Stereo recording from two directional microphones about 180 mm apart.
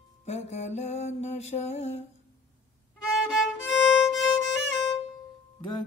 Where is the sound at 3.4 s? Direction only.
Centre (ahead or behind).